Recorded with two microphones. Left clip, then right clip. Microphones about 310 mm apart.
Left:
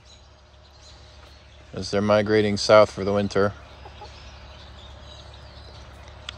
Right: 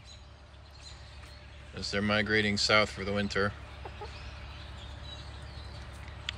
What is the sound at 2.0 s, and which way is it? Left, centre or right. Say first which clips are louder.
Speech: left 10 dB; left.